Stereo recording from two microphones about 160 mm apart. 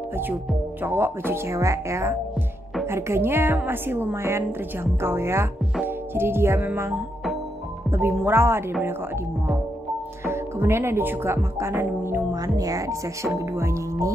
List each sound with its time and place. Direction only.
0.8 s speech: 15° right (ahead or behind)
10.2 s speech: 15° right (ahead or behind)